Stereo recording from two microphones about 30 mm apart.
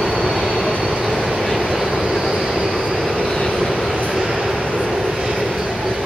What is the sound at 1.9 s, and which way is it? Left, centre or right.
Vehicle, centre.